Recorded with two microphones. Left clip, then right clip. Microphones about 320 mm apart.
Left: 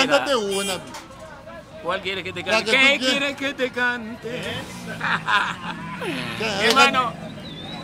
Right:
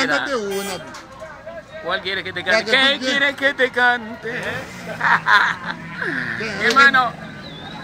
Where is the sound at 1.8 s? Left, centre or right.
Centre.